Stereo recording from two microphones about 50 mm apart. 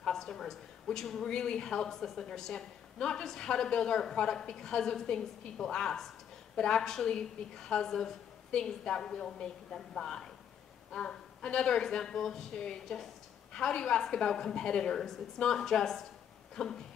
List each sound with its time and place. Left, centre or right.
0.0 s a woman's voice: centre